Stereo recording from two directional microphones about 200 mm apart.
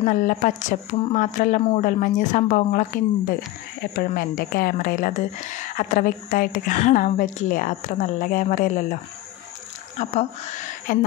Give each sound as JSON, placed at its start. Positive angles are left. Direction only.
{"t": 0.0, "sound": "a woman's voice", "side_deg": 40}
{"t": 9.9, "sound": "speech", "side_deg": 35}